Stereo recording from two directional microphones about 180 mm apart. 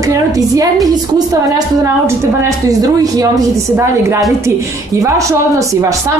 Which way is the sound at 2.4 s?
20° right (ahead or behind).